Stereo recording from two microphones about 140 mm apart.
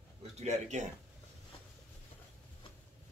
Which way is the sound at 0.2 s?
55° right (ahead or behind).